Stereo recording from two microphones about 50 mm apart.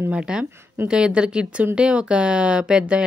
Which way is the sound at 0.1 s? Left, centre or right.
Centre.